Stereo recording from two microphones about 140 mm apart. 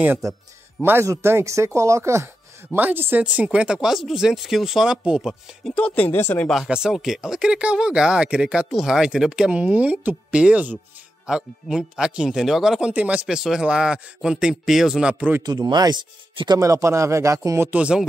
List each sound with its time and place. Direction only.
0.8 s speech: 20° right (ahead or behind); by 6.5 s 15° left (ahead or behind)
6.5 s speech: 5° right (ahead or behind)
15.4 s speech: 30° right (ahead or behind); by 18.0 s 10° right (ahead or behind)